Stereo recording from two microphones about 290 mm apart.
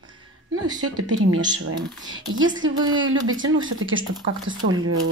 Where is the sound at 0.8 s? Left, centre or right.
Right.